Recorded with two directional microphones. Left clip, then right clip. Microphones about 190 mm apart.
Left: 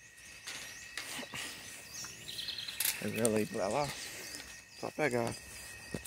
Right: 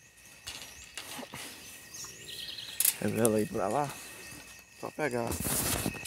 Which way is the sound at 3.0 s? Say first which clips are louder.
Right 6 dB; 50° right (ahead or behind).